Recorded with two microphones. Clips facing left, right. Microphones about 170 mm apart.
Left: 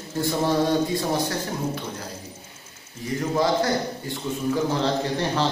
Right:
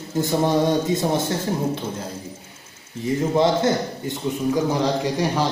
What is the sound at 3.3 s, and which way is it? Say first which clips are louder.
A man's voice: right 2 dB; 25° right (ahead or behind).